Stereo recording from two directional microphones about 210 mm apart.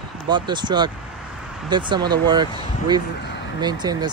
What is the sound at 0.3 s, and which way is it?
Speech, 20° right (ahead or behind).